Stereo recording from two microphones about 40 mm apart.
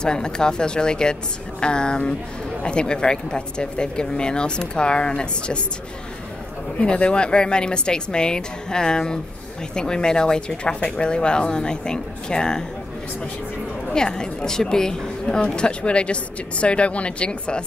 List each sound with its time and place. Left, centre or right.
0.0 s speech: centre
6.8 s speech: left
13.9 s a woman's voice: centre